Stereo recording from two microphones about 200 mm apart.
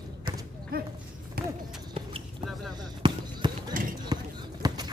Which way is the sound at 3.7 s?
45° right (ahead or behind).